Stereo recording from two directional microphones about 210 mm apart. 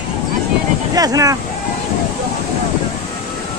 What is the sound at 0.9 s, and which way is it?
Speech, 15° right (ahead or behind).